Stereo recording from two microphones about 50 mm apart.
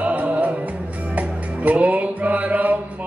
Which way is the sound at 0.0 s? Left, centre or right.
Right.